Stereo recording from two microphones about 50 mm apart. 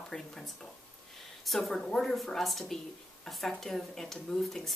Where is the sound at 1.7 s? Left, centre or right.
Centre.